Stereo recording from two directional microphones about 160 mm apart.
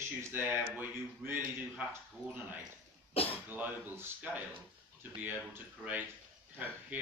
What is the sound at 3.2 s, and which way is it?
Speech, 40° left (ahead or behind).